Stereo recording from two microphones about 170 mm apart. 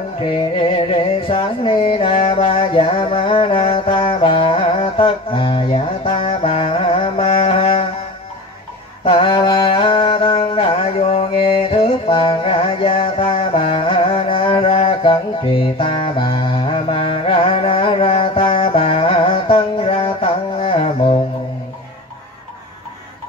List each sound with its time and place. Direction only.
0.3 s music: 30° left (ahead or behind)
9.0 s mantra: 30° left (ahead or behind)